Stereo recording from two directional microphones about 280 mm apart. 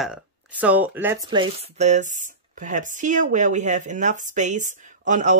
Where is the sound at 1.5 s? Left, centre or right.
Right.